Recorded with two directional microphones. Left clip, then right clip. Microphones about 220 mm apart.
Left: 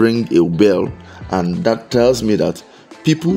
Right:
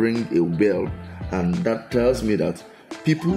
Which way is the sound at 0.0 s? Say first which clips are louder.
Left 7 dB; 35° left (ahead or behind).